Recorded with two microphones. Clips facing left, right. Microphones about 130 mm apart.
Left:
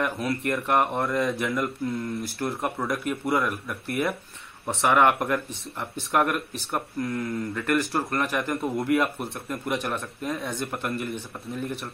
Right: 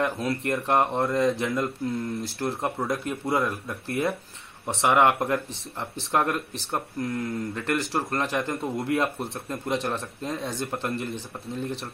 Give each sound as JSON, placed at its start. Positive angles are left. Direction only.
{"t": 0.0, "sound": "speech", "side_deg": -25}